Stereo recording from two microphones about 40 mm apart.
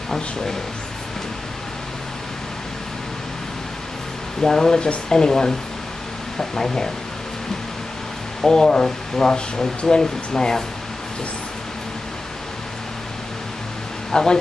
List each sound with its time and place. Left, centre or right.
4.4 s speech: centre
8.4 s speech: centre
14.1 s speech: centre